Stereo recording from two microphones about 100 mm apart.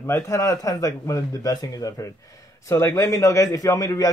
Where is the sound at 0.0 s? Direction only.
30° left (ahead or behind).